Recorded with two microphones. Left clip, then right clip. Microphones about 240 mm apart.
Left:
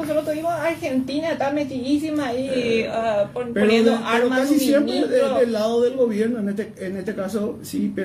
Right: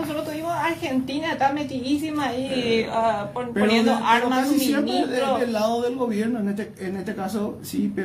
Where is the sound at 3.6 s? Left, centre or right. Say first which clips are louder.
Left 3 dB; centre.